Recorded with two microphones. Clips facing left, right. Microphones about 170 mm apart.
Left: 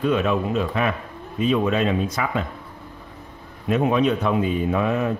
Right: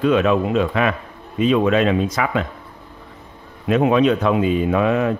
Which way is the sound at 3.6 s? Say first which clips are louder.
Right 4 dB; 90° right.